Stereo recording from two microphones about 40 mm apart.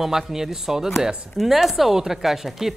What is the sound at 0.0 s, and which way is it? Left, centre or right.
A man's voice, centre.